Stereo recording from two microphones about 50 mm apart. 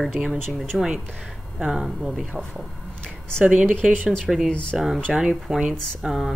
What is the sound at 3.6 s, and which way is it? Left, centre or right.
Speech, centre.